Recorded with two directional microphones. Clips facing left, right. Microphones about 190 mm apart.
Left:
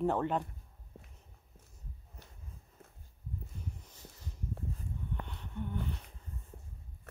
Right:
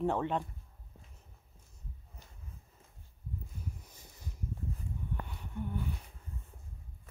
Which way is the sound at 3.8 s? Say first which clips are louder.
Even; 10° right (ahead or behind).